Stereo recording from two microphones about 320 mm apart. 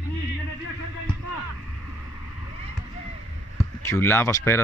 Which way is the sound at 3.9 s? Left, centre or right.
Centre.